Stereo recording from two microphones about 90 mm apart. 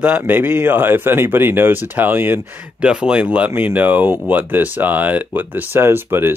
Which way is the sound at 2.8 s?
10° right (ahead or behind).